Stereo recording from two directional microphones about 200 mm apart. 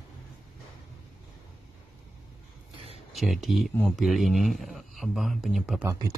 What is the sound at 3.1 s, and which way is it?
Speech, centre (ahead or behind).